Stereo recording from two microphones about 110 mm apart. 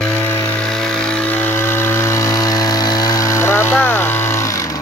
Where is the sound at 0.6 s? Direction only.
5° left (ahead or behind); by 4.7 s 30° left (ahead or behind).